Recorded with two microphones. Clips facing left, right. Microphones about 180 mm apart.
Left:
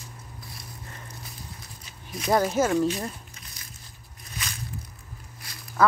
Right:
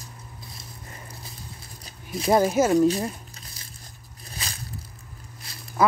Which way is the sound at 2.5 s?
10° right (ahead or behind).